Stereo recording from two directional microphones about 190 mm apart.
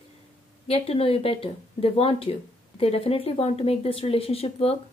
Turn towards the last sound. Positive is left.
turn(degrees=30)  # may be behind; listen again after turning